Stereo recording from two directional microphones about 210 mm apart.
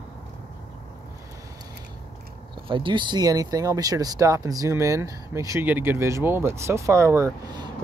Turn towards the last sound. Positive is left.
turn(degrees=-20)  # may be behind; listen again after turning